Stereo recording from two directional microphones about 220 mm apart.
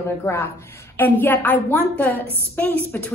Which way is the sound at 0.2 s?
10° left (ahead or behind).